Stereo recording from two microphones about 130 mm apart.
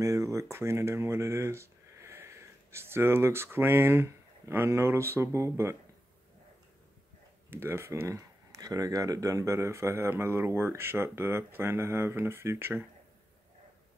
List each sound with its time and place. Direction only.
0.0 s speech: 25° right (ahead or behind)
7.4 s speech: 15° right (ahead or behind)